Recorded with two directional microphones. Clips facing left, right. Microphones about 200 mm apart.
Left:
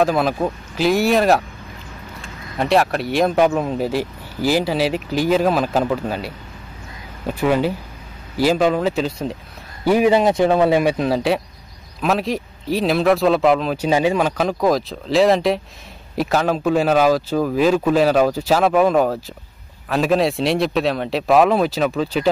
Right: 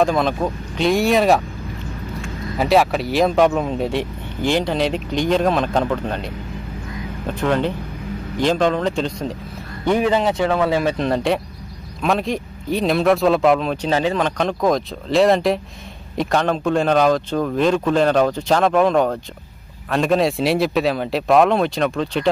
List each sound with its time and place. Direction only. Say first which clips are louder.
0.0 s speech: even; 5° left (ahead or behind)
2.5 s a man's voice: right 1 dB; centre (ahead or behind); by 11.0 s 15° left (ahead or behind)
11.0 s speech: left 1 dB; 5° left (ahead or behind)